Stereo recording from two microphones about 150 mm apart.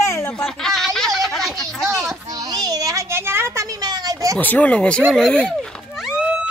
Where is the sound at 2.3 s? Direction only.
25° right (ahead or behind).